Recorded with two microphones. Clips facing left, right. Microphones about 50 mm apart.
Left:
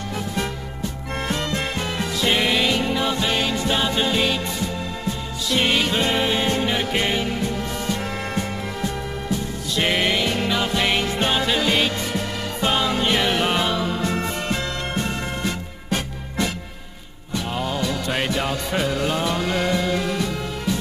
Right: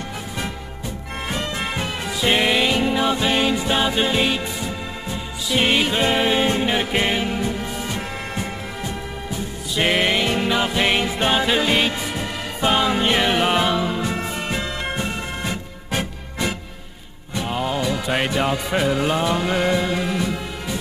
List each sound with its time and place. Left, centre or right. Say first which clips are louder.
1.6 s music: even; centre
5.5 s music: right 1 dB; centre
9.8 s music: right 2 dB; centre
15.9 s music: even; centre